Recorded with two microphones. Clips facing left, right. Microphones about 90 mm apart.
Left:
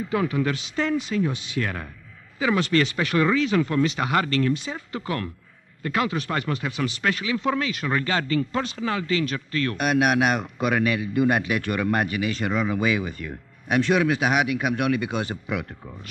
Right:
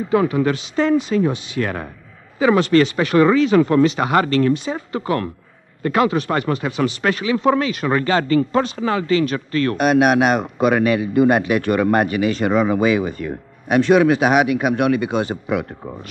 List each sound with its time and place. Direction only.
0.1 s a man's voice: 35° right (ahead or behind)